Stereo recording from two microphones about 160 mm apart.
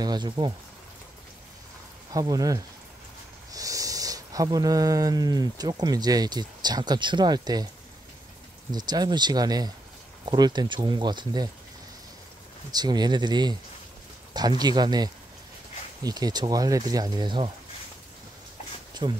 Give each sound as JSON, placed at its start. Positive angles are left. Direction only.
{"t": 0.0, "sound": "speech", "side_deg": -25}
{"t": 2.1, "sound": "speech", "side_deg": -20}
{"t": 8.7, "sound": "speech", "side_deg": -25}
{"t": 12.7, "sound": "speech", "side_deg": -25}
{"t": 19.0, "sound": "speech", "side_deg": -25}